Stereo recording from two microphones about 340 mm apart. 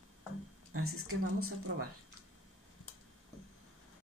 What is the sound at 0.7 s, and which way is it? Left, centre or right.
Speech, right.